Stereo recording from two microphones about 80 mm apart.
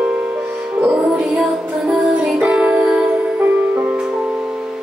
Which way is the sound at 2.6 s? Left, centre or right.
Right.